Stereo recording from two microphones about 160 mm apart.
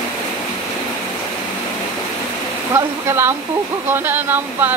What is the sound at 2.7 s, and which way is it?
Speech, 15° right (ahead or behind).